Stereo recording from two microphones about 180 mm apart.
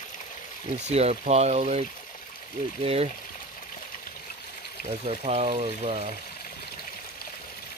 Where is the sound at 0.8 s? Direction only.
35° right (ahead or behind).